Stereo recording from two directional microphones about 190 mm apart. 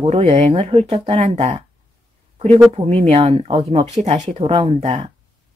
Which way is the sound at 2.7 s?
30° right (ahead or behind).